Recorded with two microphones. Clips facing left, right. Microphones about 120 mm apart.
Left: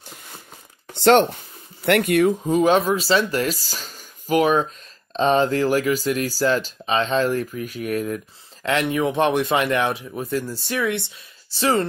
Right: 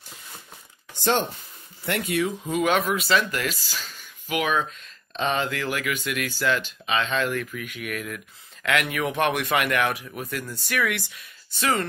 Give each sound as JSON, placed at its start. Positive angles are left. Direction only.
{"t": 0.9, "sound": "speech", "side_deg": 70}
{"t": 2.4, "sound": "speech", "side_deg": 30}